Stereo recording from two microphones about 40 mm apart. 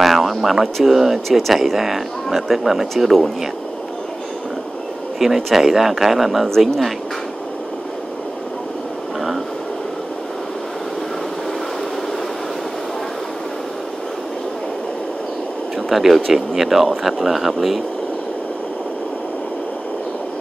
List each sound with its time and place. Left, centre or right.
0.0 s speech: centre
5.2 s speech: centre
15.9 s speech: centre